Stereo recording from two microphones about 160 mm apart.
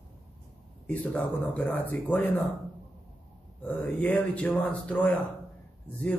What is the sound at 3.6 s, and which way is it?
Speech, 10° left (ahead or behind).